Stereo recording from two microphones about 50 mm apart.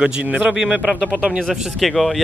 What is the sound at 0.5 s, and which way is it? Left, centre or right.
Speech, centre.